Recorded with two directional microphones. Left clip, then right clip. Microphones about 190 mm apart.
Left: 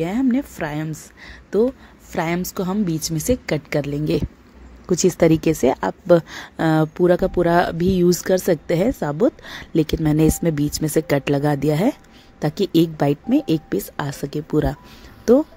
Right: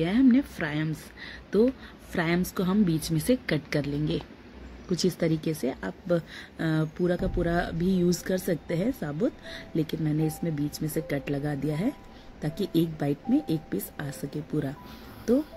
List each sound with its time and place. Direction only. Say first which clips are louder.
0.0 s a woman's voice: left 2 dB; 40° left (ahead or behind)